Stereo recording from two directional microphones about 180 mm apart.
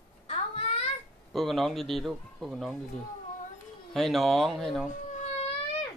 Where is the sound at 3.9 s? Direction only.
Centre (ahead or behind).